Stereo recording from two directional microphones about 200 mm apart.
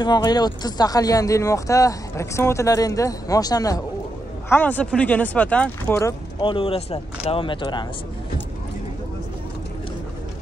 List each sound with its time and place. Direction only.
0.0 s speech: 20° left (ahead or behind)
6.4 s speech: 25° left (ahead or behind)